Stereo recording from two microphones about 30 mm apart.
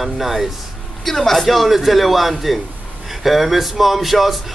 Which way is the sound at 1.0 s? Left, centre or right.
Centre.